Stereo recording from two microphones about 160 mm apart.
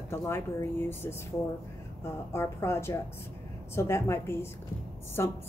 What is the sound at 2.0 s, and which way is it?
A woman's voice, 15° left (ahead or behind).